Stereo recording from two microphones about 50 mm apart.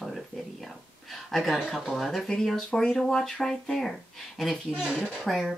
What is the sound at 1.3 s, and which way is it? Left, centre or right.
Speech, centre.